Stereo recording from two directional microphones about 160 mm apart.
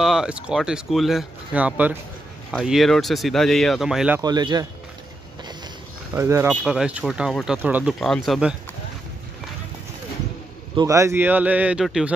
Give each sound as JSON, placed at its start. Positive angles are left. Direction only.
{"t": 0.0, "sound": "speech", "side_deg": -5}
{"t": 4.2, "sound": "speech", "side_deg": -25}
{"t": 6.1, "sound": "a man's voice", "side_deg": -15}
{"t": 6.4, "sound": "speech", "side_deg": 0}
{"t": 8.0, "sound": "speech", "side_deg": 0}
{"t": 10.8, "sound": "a man's voice", "side_deg": -20}